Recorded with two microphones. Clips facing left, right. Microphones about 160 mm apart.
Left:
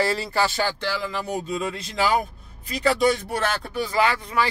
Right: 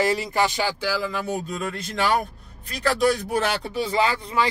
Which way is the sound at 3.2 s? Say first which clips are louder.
Right 2 dB; 15° right (ahead or behind).